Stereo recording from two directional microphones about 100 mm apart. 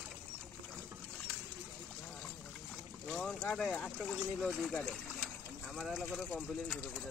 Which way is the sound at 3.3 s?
10° left (ahead or behind).